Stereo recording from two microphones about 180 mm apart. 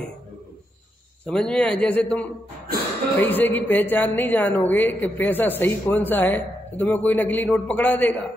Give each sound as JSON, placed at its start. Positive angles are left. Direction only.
{"t": 1.2, "sound": "speech", "side_deg": 5}